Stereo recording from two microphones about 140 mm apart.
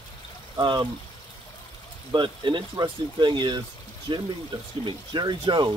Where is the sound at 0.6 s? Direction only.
35° right (ahead or behind).